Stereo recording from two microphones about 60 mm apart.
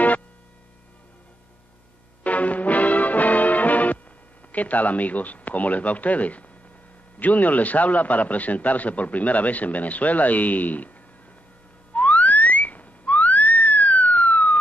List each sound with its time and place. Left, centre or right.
2.2 s music: left
4.5 s a man's voice: left
11.9 s whistling: left